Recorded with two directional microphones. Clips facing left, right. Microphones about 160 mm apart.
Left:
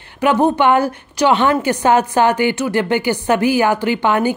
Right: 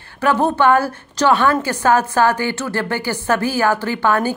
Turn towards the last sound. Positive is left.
turn(degrees=15)  # may be behind; listen again after turning